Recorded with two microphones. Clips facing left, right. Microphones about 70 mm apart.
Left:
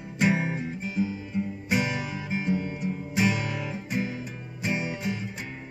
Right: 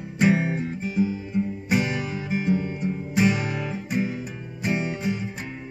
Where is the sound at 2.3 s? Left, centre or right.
Right.